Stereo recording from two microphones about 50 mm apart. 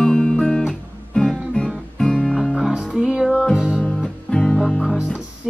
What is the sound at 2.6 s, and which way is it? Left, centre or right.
Music, centre.